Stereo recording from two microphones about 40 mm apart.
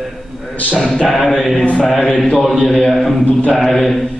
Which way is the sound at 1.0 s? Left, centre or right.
Centre.